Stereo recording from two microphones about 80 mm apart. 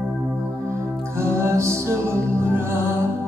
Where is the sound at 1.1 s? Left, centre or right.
Right.